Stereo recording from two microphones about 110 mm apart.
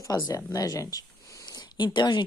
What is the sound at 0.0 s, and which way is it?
Speech, 30° left (ahead or behind).